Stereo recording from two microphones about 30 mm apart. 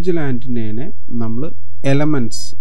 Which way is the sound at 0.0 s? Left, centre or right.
Right.